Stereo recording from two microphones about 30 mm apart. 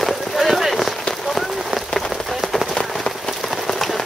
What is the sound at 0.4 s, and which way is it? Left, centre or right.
Rain on surface, centre.